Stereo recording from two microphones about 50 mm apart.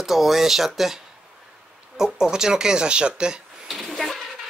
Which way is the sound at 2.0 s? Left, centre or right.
Centre.